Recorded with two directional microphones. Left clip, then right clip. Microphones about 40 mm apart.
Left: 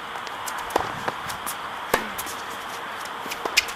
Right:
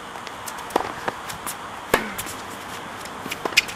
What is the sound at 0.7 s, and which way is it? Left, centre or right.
Walk, centre.